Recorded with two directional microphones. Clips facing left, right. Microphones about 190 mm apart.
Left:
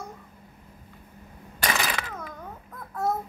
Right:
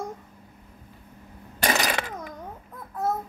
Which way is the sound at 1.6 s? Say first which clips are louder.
Right 3 dB; 40° right (ahead or behind).